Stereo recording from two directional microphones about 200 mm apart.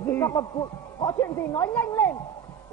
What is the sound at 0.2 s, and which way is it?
A man's voice, 15° left (ahead or behind).